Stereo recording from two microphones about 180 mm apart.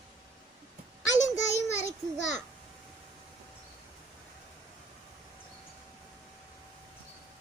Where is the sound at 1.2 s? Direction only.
40° left (ahead or behind).